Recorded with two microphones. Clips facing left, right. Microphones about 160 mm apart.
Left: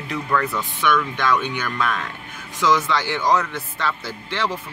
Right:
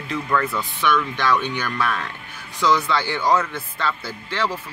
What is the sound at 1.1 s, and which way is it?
Speech, 15° left (ahead or behind).